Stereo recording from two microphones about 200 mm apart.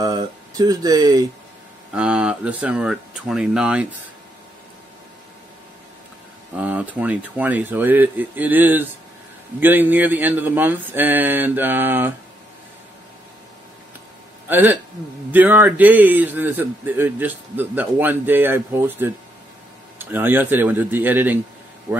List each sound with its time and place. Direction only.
0.0 s speech: 20° right (ahead or behind)
2.0 s speech: 5° right (ahead or behind)
6.6 s a man's voice: 10° right (ahead or behind)
14.5 s a man's voice: 10° right (ahead or behind)